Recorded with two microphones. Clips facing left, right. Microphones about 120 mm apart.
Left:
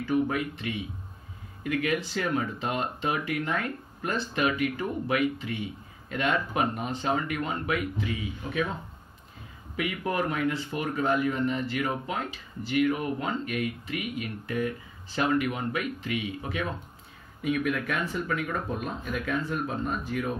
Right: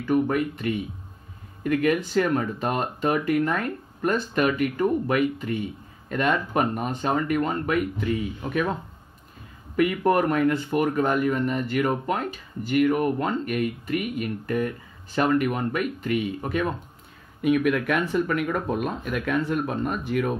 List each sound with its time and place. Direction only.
0.0 s speech: 50° right (ahead or behind)
9.8 s speech: 55° right (ahead or behind)
17.4 s speech: 65° right (ahead or behind)